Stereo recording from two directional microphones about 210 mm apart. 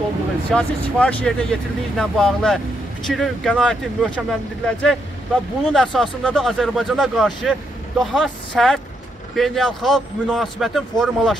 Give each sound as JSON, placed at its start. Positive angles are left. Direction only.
{"t": 0.5, "sound": "speech", "side_deg": 5}